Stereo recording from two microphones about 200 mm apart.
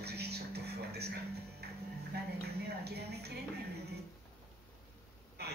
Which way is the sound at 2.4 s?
55° right (ahead or behind).